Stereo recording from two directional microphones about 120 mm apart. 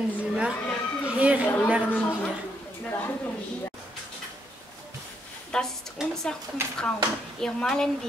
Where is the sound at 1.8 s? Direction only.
15° left (ahead or behind).